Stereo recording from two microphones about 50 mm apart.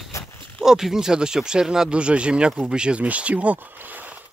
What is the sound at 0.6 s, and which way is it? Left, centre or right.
Speech, centre.